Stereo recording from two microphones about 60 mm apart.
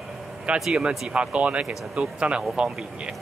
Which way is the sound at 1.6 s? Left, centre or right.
Centre.